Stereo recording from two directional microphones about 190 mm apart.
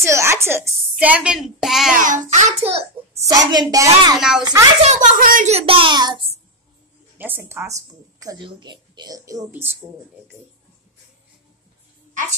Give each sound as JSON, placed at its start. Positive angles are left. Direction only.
{"t": 0.0, "sound": "a woman's voice", "side_deg": -15}
{"t": 2.0, "sound": "a child's voice", "side_deg": -40}
{"t": 3.3, "sound": "a woman's voice", "side_deg": -20}
{"t": 4.2, "sound": "speech", "side_deg": -5}
{"t": 4.8, "sound": "a child's voice", "side_deg": -40}
{"t": 7.2, "sound": "a woman's voice", "side_deg": -10}